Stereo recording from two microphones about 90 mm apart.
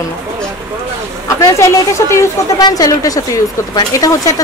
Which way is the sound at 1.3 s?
35° left (ahead or behind).